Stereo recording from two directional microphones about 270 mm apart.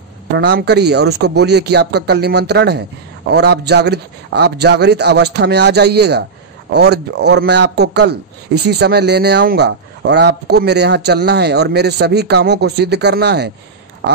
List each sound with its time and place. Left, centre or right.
0.4 s speech: right